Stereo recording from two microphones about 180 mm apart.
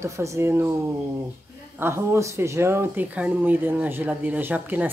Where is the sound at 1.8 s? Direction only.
15° right (ahead or behind).